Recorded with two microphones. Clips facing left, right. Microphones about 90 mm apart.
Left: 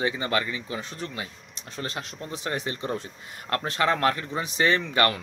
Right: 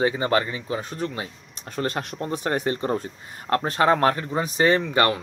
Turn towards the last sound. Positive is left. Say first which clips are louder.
# right 3 dB
turn(degrees=-30)  # may be behind; listen again after turning